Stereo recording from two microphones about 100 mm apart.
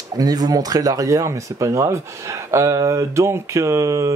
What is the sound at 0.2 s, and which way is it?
Speech, 40° right (ahead or behind).